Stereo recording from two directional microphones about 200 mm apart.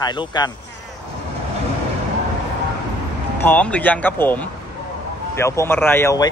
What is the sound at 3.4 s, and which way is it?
Speech, 5° left (ahead or behind).